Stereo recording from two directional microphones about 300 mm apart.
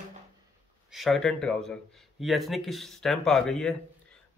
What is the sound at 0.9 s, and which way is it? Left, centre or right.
Speech, centre.